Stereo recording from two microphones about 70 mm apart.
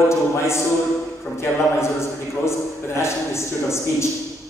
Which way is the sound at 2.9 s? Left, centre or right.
Left.